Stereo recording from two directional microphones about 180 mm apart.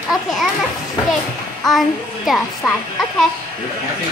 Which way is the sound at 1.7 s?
Centre (ahead or behind).